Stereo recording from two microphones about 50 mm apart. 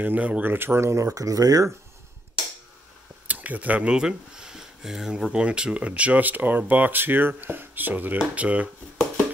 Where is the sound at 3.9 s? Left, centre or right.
Centre.